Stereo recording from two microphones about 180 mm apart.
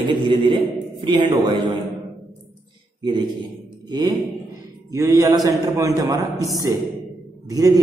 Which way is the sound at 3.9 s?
20° right (ahead or behind).